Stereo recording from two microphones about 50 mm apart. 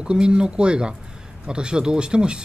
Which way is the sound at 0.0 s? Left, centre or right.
Centre.